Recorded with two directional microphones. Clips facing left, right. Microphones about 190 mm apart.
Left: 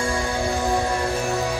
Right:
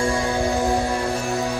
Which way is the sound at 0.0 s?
15° right (ahead or behind).